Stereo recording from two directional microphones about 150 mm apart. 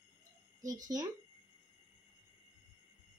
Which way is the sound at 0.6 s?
25° right (ahead or behind).